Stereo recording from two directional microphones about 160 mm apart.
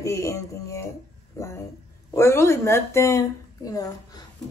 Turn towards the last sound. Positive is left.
turn(degrees=20)  # may be behind; listen again after turning